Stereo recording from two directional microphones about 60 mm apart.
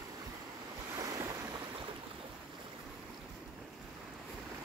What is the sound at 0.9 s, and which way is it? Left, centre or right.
Waves, right.